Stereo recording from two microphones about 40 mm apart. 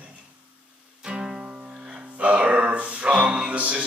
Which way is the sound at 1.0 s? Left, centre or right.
Right.